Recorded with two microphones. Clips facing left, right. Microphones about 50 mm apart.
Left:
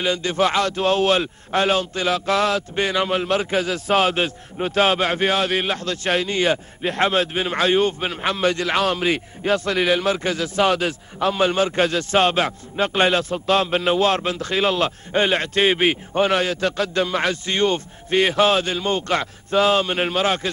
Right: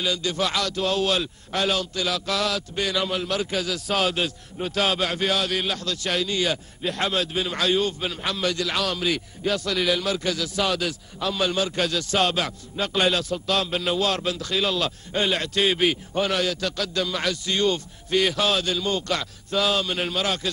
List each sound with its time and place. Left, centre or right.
0.0 s a man's voice: left